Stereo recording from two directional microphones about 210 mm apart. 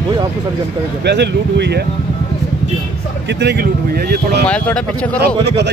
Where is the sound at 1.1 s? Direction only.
55° right (ahead or behind).